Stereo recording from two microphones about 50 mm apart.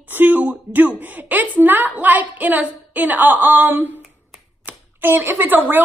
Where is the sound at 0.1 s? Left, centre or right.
Right.